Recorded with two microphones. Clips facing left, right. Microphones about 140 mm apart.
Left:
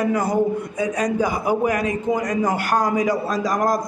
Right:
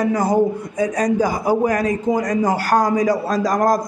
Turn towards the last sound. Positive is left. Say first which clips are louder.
# right 3 dB
turn(degrees=-40)  # may be behind; listen again after turning